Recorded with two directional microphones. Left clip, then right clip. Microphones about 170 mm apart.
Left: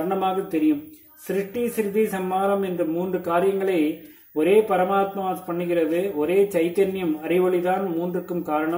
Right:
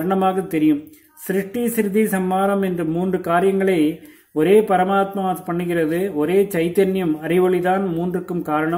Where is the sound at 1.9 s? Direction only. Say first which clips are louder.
Right 3 dB; 35° right (ahead or behind).